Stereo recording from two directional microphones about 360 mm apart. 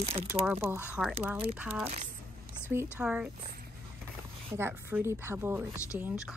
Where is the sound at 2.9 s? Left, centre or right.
Centre.